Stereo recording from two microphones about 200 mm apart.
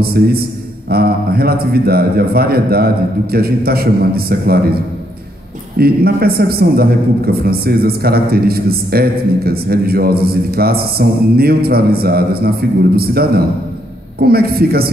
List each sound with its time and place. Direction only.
0.0 s a man's voice: 50° right (ahead or behind)